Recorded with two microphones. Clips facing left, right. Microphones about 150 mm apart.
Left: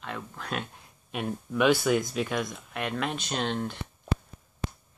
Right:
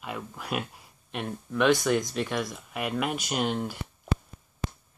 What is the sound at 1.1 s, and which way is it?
Speech, 5° left (ahead or behind).